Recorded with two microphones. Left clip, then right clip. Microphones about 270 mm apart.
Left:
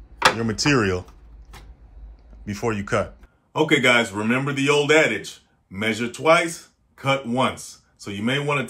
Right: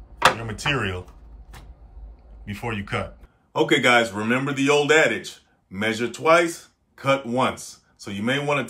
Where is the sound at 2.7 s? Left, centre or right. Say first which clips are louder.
Left 4 dB; centre.